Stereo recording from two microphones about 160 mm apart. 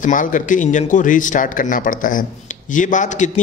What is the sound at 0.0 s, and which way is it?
A man's voice, 55° left (ahead or behind).